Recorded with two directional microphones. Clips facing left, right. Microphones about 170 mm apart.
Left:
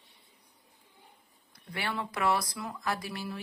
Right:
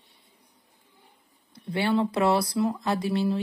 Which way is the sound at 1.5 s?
25° right (ahead or behind).